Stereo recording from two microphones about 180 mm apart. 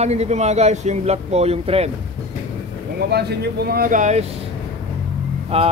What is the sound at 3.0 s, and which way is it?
Speech, 65° right (ahead or behind).